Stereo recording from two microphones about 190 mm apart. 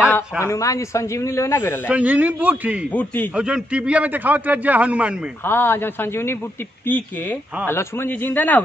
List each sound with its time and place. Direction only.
0.1 s speech: 15° left (ahead or behind)
1.9 s a man's voice: 5° right (ahead or behind)
2.9 s speech: 10° left (ahead or behind)
3.3 s a man's voice: 5° right (ahead or behind)
5.4 s speech: 10° left (ahead or behind)
7.6 s speech: 10° left (ahead or behind)